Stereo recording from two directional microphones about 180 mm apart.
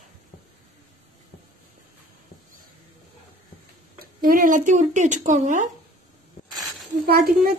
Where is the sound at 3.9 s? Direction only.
50° right (ahead or behind).